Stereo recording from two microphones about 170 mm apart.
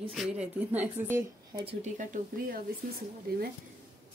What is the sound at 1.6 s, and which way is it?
Speech, 35° right (ahead or behind).